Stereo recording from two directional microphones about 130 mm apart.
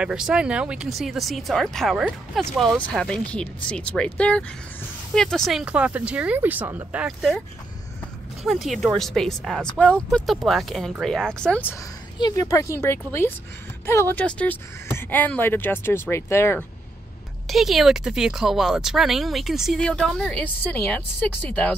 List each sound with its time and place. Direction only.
0.0 s speech: 5° right (ahead or behind)
8.5 s speech: centre (ahead or behind)
12.4 s speech: 25° left (ahead or behind)
17.5 s speech: centre (ahead or behind)